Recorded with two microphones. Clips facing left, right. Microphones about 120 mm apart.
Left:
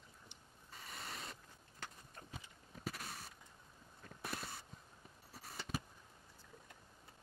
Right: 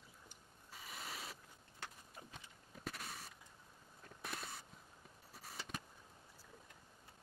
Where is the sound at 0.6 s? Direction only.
Centre (ahead or behind).